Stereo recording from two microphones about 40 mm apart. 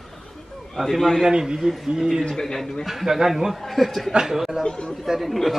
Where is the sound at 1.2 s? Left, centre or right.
Centre.